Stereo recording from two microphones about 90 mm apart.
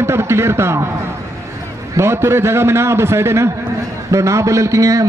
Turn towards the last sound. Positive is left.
turn(degrees=-35)  # may be behind; listen again after turning